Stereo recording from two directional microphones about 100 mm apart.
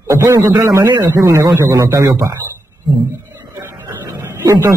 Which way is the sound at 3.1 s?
25° right (ahead or behind).